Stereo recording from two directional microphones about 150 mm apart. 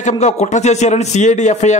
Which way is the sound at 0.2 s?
50° left (ahead or behind).